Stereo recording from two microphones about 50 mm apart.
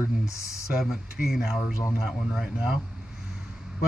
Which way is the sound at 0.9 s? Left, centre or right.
Centre.